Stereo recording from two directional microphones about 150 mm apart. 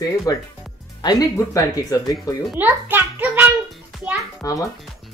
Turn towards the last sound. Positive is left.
turn(degrees=20)  # may be behind; listen again after turning